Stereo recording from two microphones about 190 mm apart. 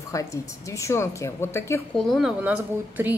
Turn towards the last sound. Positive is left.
turn(degrees=-10)  # may be behind; listen again after turning